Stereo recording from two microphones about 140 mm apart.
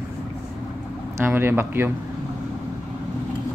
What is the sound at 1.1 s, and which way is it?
Speech, 15° right (ahead or behind).